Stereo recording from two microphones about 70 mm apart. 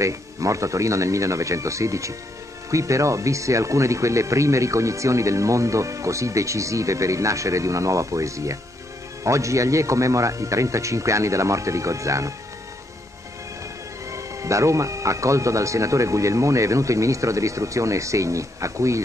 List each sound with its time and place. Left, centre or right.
0.0 s speech: right
14.1 s speech: right